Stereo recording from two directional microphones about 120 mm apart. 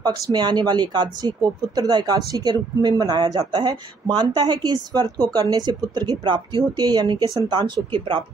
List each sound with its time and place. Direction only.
0.0 s speech: 35° right (ahead or behind)